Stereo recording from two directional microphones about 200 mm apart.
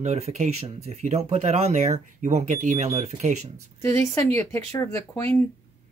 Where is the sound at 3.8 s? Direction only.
15° left (ahead or behind).